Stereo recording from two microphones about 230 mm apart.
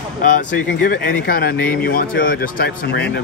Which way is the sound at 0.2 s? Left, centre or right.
Left.